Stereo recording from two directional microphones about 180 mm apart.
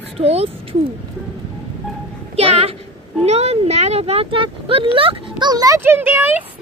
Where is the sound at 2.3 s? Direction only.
35° right (ahead or behind); by 6.4 s 10° right (ahead or behind).